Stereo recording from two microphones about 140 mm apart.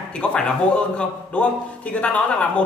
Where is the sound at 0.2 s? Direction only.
10° left (ahead or behind).